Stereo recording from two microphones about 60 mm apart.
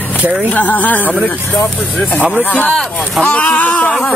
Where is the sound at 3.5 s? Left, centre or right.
Left.